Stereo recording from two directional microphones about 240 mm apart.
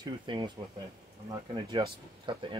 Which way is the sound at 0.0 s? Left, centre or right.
Centre.